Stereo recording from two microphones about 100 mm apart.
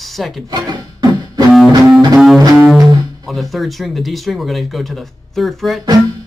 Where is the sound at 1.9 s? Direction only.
Centre (ahead or behind).